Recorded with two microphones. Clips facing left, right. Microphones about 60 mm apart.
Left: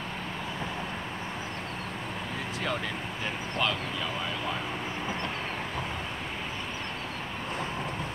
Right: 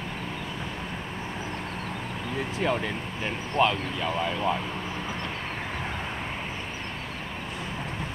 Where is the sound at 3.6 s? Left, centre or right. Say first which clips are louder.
Right 7 dB; right.